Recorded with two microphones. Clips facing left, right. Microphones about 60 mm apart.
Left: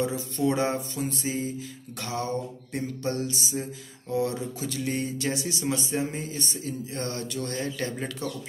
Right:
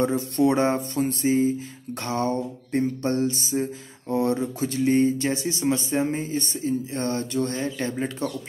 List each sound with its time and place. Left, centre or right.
0.0 s speech: right